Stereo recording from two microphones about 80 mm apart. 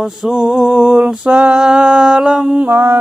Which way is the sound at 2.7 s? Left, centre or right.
Right.